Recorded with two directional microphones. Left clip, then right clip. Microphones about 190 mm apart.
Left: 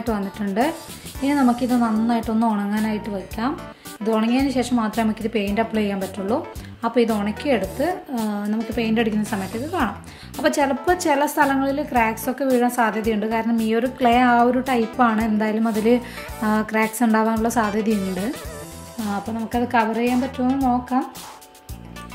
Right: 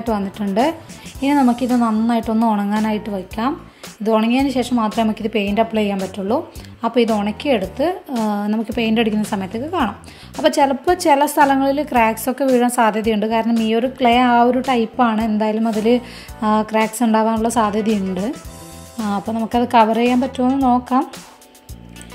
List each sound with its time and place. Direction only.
0.1 s a woman's voice: 25° right (ahead or behind)
19.1 s speech: 35° right (ahead or behind)